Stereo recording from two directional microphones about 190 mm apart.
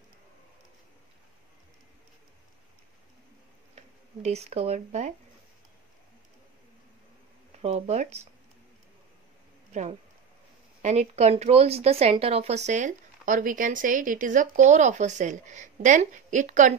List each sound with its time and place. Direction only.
4.2 s speech: 35° right (ahead or behind)
7.6 s speech: 35° right (ahead or behind)
10.8 s speech: 35° right (ahead or behind)